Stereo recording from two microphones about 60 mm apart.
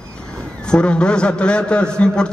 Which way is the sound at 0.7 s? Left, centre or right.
Centre.